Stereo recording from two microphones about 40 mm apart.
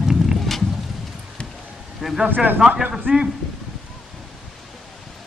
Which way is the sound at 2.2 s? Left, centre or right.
Right.